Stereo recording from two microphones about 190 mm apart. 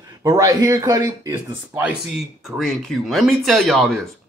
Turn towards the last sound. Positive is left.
turn(degrees=0)  # may be behind; listen again after turning